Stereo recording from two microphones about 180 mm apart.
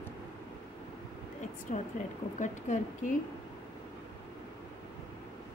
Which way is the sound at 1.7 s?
45° left (ahead or behind).